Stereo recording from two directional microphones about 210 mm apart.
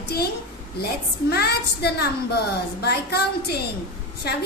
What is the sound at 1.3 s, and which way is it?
A woman's voice, 50° left (ahead or behind).